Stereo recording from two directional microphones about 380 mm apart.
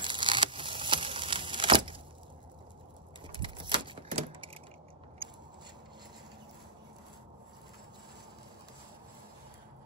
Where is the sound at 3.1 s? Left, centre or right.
Centre.